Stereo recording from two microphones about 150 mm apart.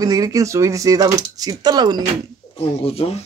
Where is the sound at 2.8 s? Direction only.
40° left (ahead or behind).